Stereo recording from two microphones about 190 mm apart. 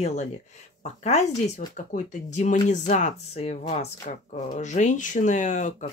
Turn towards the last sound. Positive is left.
turn(degrees=40)  # may be behind; listen again after turning